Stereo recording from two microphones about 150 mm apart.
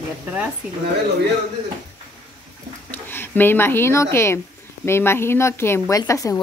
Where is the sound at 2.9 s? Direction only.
15° left (ahead or behind).